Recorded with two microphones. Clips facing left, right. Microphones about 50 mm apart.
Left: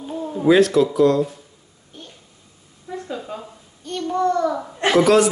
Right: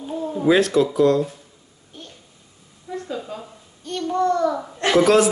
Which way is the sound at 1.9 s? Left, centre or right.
Centre.